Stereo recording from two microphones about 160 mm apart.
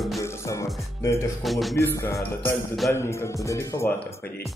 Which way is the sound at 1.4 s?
Centre (ahead or behind).